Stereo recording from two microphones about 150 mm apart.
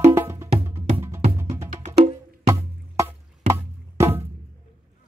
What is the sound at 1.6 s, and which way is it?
Music, 45° right (ahead or behind).